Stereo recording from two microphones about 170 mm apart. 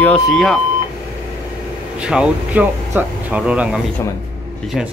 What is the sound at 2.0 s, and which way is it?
Speech, 5° right (ahead or behind).